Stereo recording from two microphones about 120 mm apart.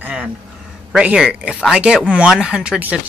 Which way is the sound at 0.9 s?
5° right (ahead or behind).